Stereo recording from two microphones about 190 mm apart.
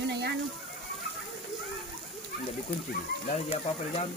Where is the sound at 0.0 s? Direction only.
60° right (ahead or behind).